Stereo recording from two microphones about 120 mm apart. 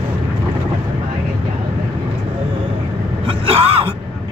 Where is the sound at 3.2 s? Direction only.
50° right (ahead or behind).